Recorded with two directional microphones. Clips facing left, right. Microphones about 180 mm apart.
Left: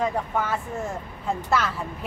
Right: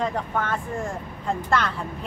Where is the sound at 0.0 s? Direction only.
5° left (ahead or behind).